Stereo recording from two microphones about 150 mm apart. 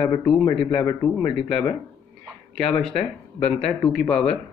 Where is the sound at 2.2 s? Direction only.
Centre (ahead or behind).